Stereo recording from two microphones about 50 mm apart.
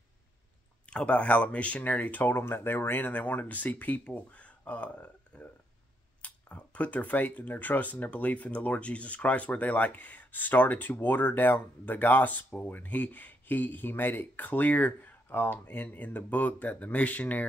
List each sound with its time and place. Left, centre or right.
0.8 s speech: left
2.3 s speech: left
3.1 s speech: left